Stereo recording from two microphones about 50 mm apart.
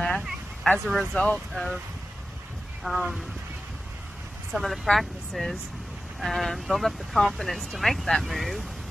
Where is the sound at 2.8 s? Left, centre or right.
Centre.